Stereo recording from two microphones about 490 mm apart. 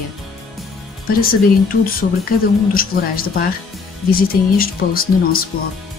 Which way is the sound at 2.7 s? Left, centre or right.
Centre.